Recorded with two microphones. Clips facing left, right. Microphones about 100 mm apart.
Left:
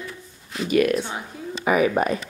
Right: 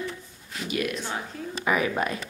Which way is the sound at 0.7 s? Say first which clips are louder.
Left 10 dB; 50° left (ahead or behind).